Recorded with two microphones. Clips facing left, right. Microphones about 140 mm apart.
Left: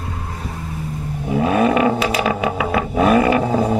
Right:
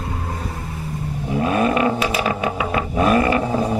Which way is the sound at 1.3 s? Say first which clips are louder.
Left 3 dB; 15° left (ahead or behind).